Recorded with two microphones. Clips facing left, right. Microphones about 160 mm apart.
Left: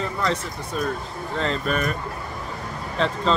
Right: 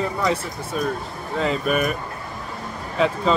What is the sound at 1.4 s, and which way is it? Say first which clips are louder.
Speech: right 3 dB; 10° right (ahead or behind).